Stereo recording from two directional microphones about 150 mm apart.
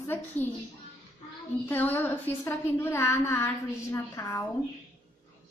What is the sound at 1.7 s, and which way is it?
A woman's voice, 15° left (ahead or behind).